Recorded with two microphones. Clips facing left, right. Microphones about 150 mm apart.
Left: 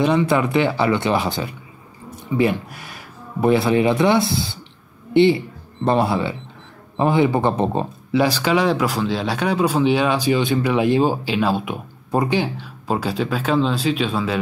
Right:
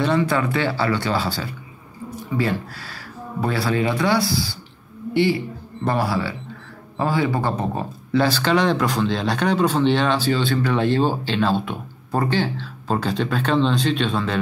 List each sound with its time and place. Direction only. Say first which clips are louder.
0.0 s speech: left 3 dB; 15° left (ahead or behind)
8.1 s speech: left 1 dB; 10° left (ahead or behind)